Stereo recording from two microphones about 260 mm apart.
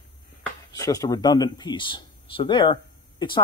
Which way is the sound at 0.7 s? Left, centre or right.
Centre.